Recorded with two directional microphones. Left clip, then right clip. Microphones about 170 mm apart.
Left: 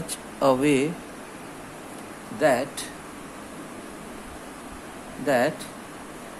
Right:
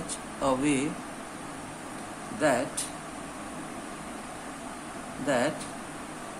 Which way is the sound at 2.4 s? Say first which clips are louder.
Left 5 dB; 25° left (ahead or behind).